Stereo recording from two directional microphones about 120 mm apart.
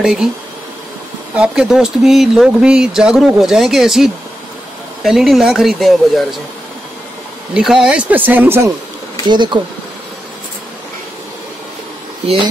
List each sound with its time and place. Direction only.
0.0 s speech: 5° right (ahead or behind)
1.3 s speech: 5° right (ahead or behind)
7.5 s speech: 5° right (ahead or behind)
9.3 s speech: 40° right (ahead or behind)